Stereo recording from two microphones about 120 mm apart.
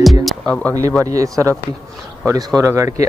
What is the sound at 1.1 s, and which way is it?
Speech, 25° right (ahead or behind).